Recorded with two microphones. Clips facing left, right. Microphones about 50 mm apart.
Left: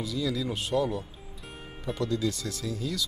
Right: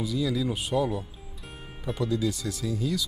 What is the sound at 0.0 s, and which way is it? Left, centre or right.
Speech, centre.